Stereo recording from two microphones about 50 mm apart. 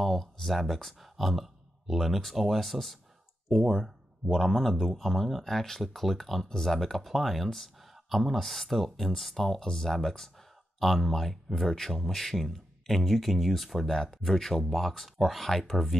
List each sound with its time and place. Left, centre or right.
0.0 s speech: centre